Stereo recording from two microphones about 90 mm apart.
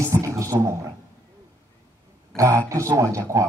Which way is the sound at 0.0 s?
35° right (ahead or behind).